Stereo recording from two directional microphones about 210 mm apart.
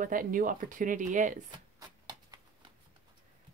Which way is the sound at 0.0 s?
40° right (ahead or behind).